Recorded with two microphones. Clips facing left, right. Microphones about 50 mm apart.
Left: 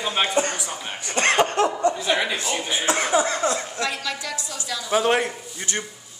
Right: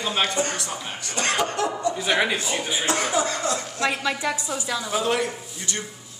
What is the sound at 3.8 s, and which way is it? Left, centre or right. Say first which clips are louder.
A woman's voice: right 3 dB; right.